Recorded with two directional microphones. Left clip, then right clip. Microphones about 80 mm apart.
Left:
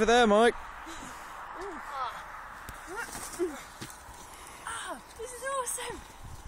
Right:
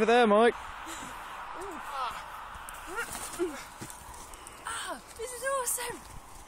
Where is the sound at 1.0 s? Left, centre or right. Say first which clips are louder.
Right 2 dB; left.